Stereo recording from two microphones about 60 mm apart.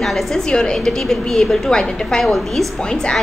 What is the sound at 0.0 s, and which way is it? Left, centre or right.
A woman's voice, centre.